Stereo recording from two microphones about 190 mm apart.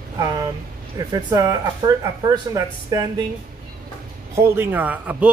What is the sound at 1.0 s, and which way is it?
Speech, 15° right (ahead or behind).